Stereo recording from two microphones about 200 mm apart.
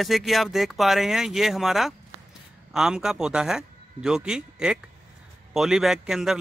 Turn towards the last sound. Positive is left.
turn(degrees=0)  # may be behind; listen again after turning